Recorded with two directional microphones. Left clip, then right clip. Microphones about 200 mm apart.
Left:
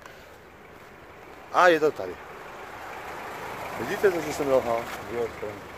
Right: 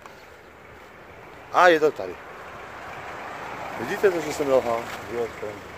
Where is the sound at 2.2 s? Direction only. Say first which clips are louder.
Right 2 dB; 55° left (ahead or behind).